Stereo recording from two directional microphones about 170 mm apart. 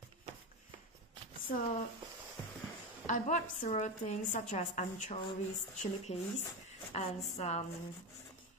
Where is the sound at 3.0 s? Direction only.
50° left (ahead or behind).